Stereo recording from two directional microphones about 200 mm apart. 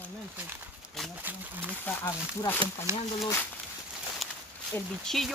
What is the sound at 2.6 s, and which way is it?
Speech, 25° right (ahead or behind).